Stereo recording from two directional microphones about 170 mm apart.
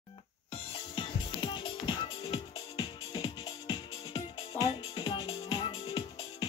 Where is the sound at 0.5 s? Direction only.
30° left (ahead or behind).